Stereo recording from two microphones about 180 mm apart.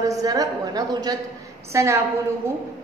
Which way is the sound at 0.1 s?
20° right (ahead or behind).